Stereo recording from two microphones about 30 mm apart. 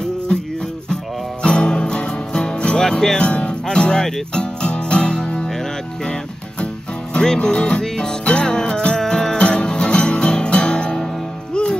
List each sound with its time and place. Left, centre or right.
1.4 s music: left
2.8 s music: centre
3.2 s music: left
7.2 s music: left
9.4 s music: left